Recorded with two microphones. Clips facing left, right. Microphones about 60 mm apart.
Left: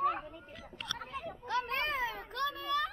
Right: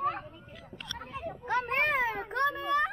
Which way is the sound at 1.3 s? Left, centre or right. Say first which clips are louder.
Right 4 dB; right.